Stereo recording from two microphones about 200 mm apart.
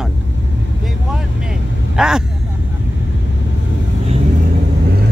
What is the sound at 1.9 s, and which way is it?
Speech, 5° right (ahead or behind).